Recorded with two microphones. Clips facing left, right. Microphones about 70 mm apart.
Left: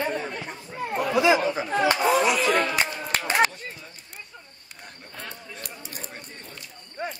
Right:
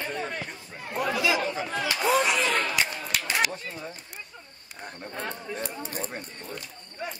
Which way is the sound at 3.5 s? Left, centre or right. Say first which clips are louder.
Right 4 dB; right.